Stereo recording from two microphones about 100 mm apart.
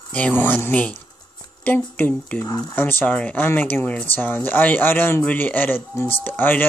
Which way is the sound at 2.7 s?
20° left (ahead or behind).